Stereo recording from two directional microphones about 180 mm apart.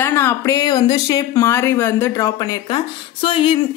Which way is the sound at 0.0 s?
15° left (ahead or behind).